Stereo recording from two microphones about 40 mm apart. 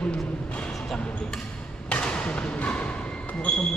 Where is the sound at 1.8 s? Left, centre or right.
Left.